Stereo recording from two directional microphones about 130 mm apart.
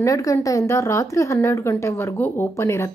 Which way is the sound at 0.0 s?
25° left (ahead or behind).